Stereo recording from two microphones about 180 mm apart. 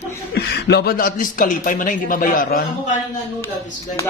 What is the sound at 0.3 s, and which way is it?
Speech, 65° left (ahead or behind).